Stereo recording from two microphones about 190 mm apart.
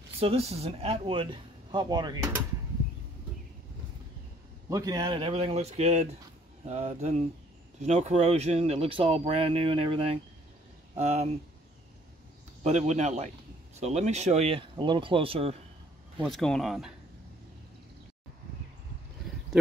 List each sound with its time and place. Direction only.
0.2 s speech: 35° right (ahead or behind)
4.6 s speech: 20° right (ahead or behind); by 11.2 s 35° right (ahead or behind)
12.6 s speech: 35° right (ahead or behind)
16.2 s speech: centre (ahead or behind)